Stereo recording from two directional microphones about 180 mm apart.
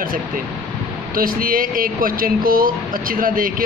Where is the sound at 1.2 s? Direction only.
50° right (ahead or behind).